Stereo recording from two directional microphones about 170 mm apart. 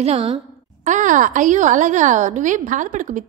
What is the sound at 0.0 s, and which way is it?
Speech, 35° right (ahead or behind).